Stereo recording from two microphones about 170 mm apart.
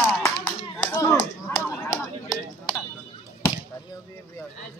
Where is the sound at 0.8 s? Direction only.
15° left (ahead or behind).